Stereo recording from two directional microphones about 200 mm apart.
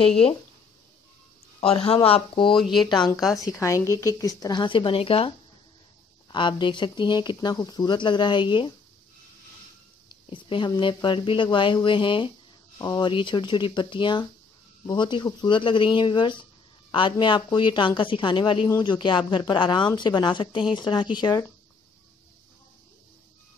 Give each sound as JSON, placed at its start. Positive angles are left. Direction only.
{"t": 1.6, "sound": "a woman's voice", "side_deg": 30}
{"t": 2.5, "sound": "speech", "side_deg": 0}
{"t": 2.8, "sound": "a woman's voice", "side_deg": 20}
{"t": 6.3, "sound": "a woman's voice", "side_deg": 25}
{"t": 10.3, "sound": "a woman's voice", "side_deg": 25}